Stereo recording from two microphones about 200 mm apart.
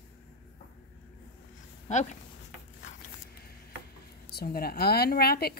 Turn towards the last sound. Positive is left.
turn(degrees=50)  # may be behind; listen again after turning